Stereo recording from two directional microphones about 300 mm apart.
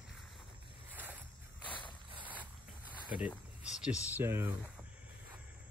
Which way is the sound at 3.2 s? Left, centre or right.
Centre.